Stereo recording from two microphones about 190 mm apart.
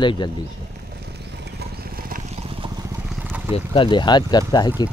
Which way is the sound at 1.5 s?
50° right (ahead or behind).